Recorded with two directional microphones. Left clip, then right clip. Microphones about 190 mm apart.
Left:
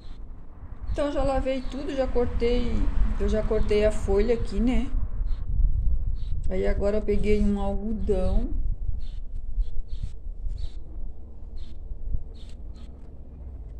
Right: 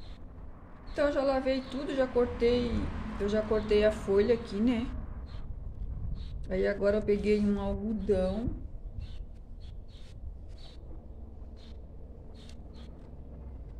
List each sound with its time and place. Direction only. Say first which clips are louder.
0.9 s a woman's voice: left 2 dB; 20° left (ahead or behind)
6.4 s a woman's voice: left 1 dB; 15° left (ahead or behind)